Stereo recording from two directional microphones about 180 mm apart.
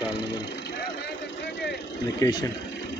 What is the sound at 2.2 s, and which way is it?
Speech, 20° left (ahead or behind).